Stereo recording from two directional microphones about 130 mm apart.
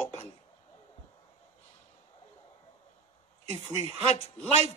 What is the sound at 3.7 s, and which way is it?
Speech, 55° left (ahead or behind).